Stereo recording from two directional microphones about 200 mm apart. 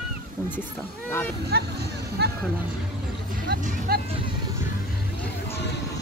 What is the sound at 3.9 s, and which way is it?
Music, 50° right (ahead or behind).